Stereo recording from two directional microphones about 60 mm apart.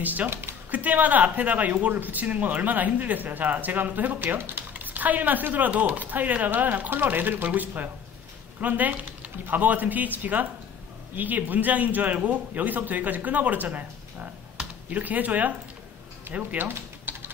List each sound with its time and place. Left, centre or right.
0.0 s speech: right
0.3 s speech: right
0.7 s speech: right